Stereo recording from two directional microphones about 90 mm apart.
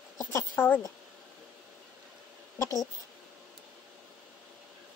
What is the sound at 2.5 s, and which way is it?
Speech, 40° left (ahead or behind).